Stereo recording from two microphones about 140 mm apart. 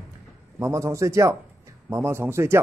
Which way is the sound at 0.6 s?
20° right (ahead or behind).